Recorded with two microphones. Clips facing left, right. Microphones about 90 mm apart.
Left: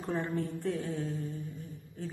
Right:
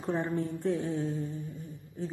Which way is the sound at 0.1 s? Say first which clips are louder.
Right 3 dB; 20° right (ahead or behind).